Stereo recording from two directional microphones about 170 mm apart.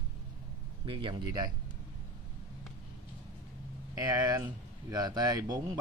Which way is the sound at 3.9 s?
20° right (ahead or behind).